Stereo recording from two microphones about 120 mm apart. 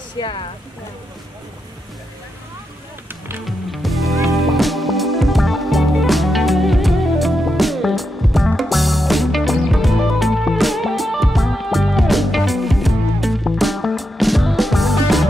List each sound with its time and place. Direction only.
0.2 s speech: 45° left (ahead or behind)
3.4 s music: centre (ahead or behind)